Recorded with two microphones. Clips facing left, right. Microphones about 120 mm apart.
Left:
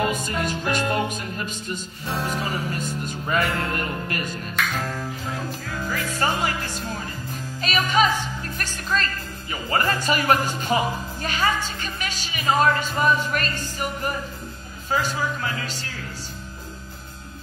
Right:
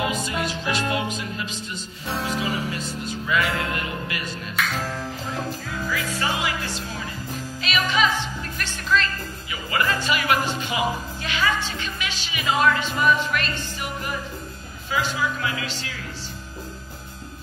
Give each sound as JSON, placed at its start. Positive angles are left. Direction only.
{"t": 0.1, "sound": "music", "side_deg": 50}
{"t": 4.6, "sound": "music", "side_deg": -5}
{"t": 6.1, "sound": "music", "side_deg": 45}
{"t": 11.2, "sound": "speech", "side_deg": 45}
{"t": 14.9, "sound": "music", "side_deg": 40}